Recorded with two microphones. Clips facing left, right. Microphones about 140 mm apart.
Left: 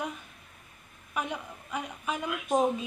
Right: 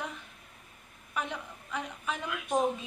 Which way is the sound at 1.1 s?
15° left (ahead or behind).